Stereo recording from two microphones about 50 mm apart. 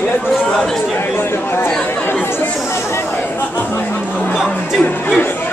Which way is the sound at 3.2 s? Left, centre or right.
Left.